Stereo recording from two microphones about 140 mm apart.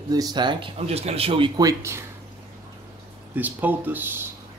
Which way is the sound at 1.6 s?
25° right (ahead or behind).